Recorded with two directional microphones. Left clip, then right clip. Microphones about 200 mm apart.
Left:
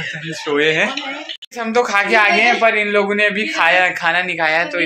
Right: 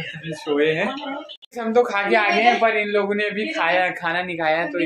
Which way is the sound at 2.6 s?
25° left (ahead or behind).